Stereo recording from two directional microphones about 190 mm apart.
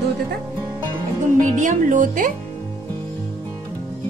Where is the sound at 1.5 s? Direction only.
40° right (ahead or behind).